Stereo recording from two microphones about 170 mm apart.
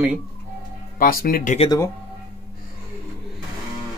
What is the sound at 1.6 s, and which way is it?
Speech, 15° left (ahead or behind).